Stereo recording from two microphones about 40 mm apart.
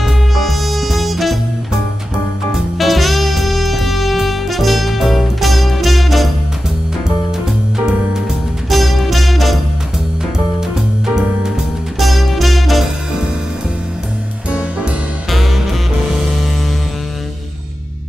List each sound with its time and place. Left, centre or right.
0.3 s music: centre
2.8 s music: centre
8.6 s music: centre
10.7 s music: centre
12.0 s music: centre
15.2 s music: centre